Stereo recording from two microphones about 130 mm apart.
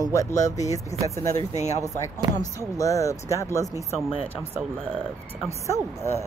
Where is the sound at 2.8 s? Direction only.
25° left (ahead or behind).